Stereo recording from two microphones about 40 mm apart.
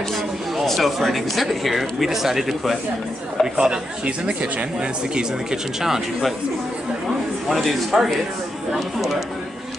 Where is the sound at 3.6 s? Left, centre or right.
Right.